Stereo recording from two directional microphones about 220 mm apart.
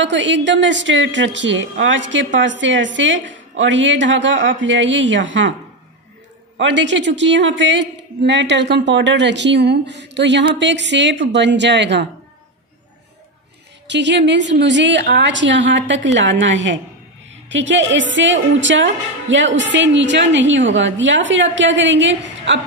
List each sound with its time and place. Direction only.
0.0 s a woman's voice: 55° right (ahead or behind)
6.5 s speech: 55° right (ahead or behind)
13.8 s a woman's voice: 55° right (ahead or behind)